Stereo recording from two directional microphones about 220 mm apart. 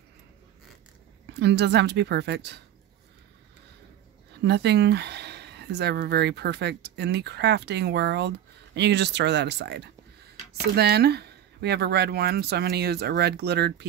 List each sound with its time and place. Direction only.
1.4 s speech: 50° right (ahead or behind)
4.4 s speech: 50° right (ahead or behind)